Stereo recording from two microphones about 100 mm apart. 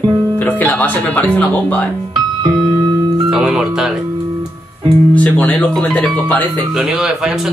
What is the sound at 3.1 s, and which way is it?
Speech, 5° right (ahead or behind).